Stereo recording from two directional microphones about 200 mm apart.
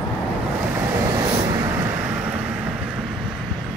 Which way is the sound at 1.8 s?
10° right (ahead or behind).